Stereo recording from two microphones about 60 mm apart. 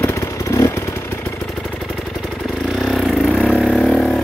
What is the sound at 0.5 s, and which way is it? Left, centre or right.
Vehicle, left.